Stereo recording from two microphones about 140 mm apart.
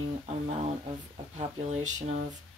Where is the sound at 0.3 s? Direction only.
45° right (ahead or behind).